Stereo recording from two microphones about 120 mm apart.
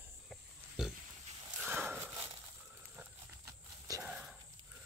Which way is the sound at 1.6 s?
15° right (ahead or behind).